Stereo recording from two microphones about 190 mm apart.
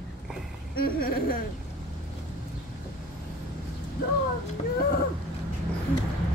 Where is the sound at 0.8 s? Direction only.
50° left (ahead or behind).